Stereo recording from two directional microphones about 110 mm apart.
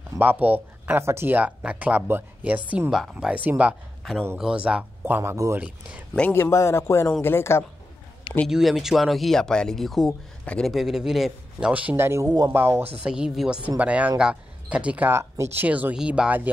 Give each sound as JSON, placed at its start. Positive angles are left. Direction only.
{"t": 0.2, "sound": "speech", "side_deg": -15}
{"t": 5.3, "sound": "speech", "side_deg": -30}
{"t": 5.6, "sound": "speech", "side_deg": -10}
{"t": 6.3, "sound": "a man's voice", "side_deg": 20}
{"t": 8.5, "sound": "speech", "side_deg": -5}
{"t": 10.7, "sound": "speech", "side_deg": -5}
{"t": 11.7, "sound": "speech", "side_deg": -15}
{"t": 13.0, "sound": "speech", "side_deg": -5}